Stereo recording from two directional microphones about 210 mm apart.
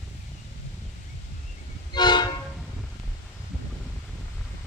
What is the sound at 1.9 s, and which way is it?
Train, 20° left (ahead or behind).